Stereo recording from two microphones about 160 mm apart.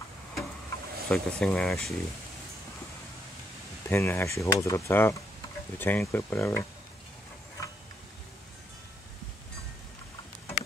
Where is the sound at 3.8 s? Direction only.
15° left (ahead or behind).